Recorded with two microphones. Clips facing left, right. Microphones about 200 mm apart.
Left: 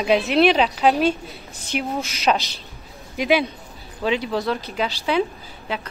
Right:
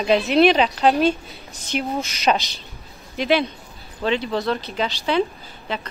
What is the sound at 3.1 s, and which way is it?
Speech, 10° left (ahead or behind).